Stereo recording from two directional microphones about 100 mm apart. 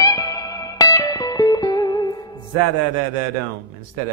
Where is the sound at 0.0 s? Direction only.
40° left (ahead or behind).